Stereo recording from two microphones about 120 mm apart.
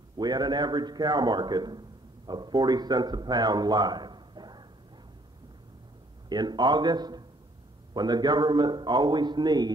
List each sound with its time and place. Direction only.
0.2 s a man's voice: 35° right (ahead or behind)
6.2 s a man's voice: 35° right (ahead or behind)